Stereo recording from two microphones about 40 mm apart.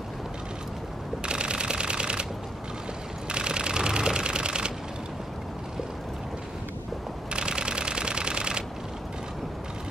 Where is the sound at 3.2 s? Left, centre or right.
Right.